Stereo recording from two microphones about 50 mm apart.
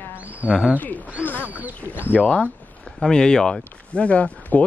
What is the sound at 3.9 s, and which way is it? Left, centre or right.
Speech, left.